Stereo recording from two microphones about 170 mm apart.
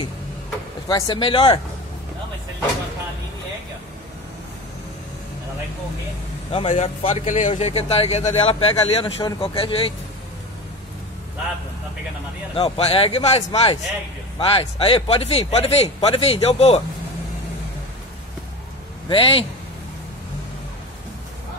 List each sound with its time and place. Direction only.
0.8 s speech: 25° left (ahead or behind)
6.5 s speech: 40° left (ahead or behind)
12.5 s speech: 35° left (ahead or behind)
19.0 s speech: 30° left (ahead or behind)